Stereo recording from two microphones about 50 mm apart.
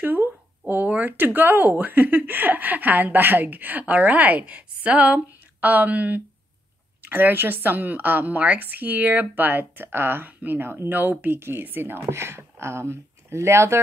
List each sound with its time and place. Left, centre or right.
0.2 s speech: right
10.9 s speech: right